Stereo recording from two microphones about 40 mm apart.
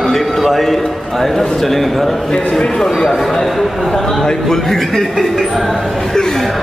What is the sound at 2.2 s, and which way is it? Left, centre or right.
Speech, centre.